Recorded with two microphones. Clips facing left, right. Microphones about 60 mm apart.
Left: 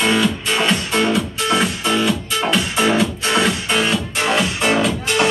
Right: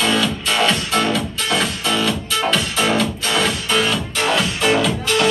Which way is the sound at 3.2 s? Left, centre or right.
Left.